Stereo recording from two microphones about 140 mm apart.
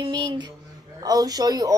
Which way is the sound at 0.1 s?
30° right (ahead or behind).